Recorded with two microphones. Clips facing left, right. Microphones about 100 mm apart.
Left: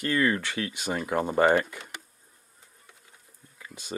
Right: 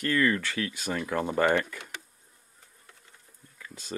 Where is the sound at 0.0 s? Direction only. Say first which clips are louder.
Even; 20° left (ahead or behind).